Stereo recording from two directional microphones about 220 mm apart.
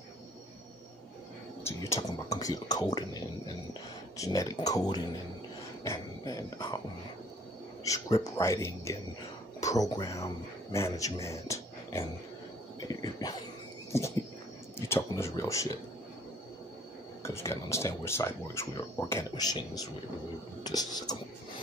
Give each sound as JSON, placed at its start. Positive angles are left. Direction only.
{"t": 1.6, "sound": "speech", "side_deg": 15}
{"t": 7.8, "sound": "speech", "side_deg": 15}
{"t": 13.2, "sound": "speech", "side_deg": 15}
{"t": 14.8, "sound": "speech", "side_deg": 10}
{"t": 17.2, "sound": "speech", "side_deg": 10}